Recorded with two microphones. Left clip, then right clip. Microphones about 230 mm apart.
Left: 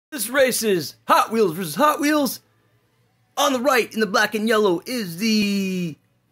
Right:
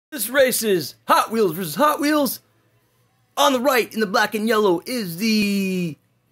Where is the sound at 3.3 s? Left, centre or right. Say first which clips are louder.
Right 1 dB; centre.